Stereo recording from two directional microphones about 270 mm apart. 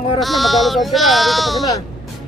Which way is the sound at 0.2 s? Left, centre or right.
Centre.